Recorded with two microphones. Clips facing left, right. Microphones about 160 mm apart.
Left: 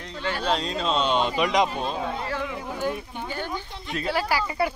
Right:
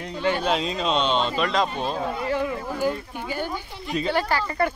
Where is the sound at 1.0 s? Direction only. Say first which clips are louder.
Even; 10° left (ahead or behind).